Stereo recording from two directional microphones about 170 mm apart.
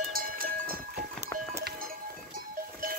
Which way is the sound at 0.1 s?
55° right (ahead or behind).